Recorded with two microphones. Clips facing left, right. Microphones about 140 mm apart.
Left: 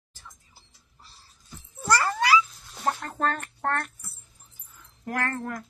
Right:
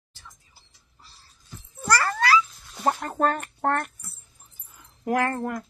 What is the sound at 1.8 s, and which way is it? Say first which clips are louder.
Cat: even; 15° left (ahead or behind).